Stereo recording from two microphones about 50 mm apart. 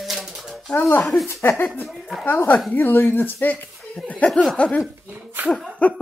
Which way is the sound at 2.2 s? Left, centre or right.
Left.